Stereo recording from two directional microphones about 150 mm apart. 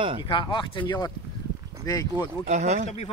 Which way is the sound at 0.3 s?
35° left (ahead or behind).